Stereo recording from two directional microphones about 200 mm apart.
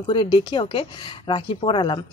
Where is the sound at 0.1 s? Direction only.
25° left (ahead or behind).